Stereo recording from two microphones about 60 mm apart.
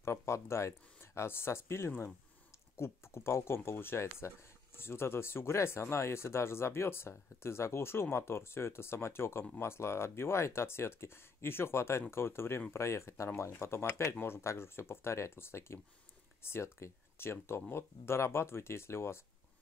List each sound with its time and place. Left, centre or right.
0.0 s speech: left